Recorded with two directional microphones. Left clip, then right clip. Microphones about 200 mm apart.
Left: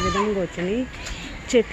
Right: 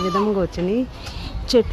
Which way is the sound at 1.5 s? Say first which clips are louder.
Right 2 dB; 15° right (ahead or behind).